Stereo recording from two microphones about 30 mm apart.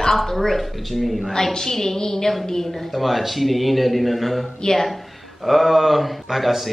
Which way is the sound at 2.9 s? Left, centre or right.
Centre.